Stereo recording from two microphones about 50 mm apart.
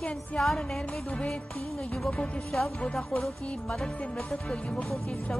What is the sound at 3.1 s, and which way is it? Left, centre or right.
Music, centre.